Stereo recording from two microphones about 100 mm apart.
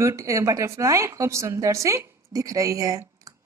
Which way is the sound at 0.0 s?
30° right (ahead or behind).